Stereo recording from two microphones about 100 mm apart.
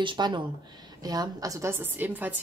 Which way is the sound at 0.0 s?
50° right (ahead or behind).